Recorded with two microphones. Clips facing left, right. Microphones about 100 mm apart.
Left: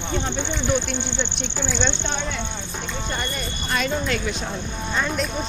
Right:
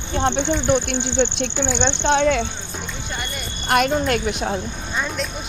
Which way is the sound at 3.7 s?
60° right (ahead or behind).